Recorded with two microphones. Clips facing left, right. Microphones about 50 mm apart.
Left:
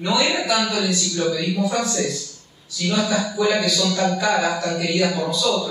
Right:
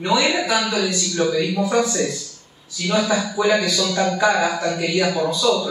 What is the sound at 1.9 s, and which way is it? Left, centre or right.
Speech, centre.